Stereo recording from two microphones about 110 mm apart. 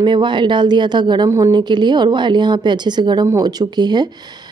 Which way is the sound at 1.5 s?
45° right (ahead or behind).